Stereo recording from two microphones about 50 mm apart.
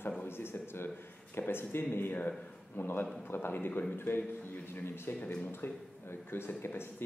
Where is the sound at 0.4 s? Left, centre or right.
Left.